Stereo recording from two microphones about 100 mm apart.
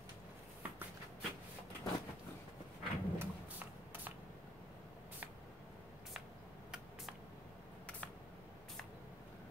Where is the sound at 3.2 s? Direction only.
15° right (ahead or behind).